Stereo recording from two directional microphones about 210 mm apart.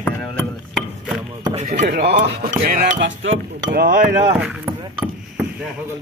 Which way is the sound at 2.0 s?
50° right (ahead or behind).